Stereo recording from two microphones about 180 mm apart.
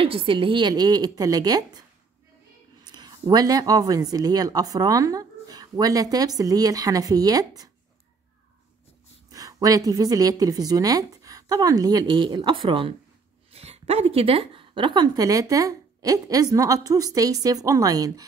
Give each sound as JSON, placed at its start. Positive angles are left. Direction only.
{"t": 0.0, "sound": "speech", "side_deg": -30}
{"t": 2.9, "sound": "speech", "side_deg": -25}
{"t": 9.3, "sound": "speech", "side_deg": -20}